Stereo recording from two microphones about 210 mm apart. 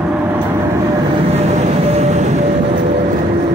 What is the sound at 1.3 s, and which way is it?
Vehicle, 30° right (ahead or behind).